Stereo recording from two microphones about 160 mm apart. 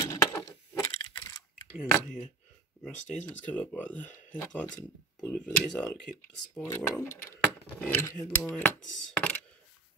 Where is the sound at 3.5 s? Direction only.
10° left (ahead or behind).